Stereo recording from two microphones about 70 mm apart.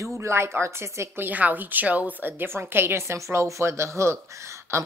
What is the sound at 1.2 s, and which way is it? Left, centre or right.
Speech, right.